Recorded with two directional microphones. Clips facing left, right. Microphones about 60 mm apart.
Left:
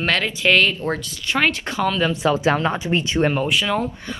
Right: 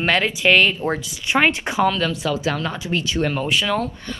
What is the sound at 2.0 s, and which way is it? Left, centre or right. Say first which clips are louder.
Speech: left 3 dB; left.